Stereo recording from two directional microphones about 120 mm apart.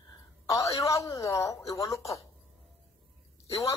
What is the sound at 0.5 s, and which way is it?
A woman's voice, 25° left (ahead or behind).